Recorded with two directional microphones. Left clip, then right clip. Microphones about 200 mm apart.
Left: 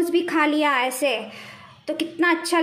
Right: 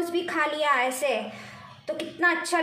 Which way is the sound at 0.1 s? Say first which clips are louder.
Left 6 dB; 45° left (ahead or behind).